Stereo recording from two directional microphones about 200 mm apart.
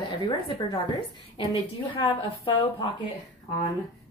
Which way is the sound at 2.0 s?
25° left (ahead or behind).